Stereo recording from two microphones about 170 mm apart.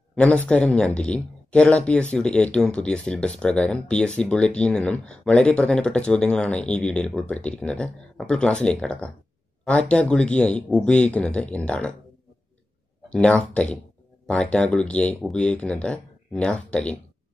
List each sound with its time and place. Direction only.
0.1 s speech: 5° left (ahead or behind)
13.1 s speech: 5° left (ahead or behind)